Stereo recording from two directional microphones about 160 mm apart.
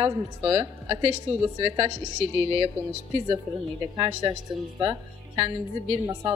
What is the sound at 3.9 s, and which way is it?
Speech, 25° right (ahead or behind).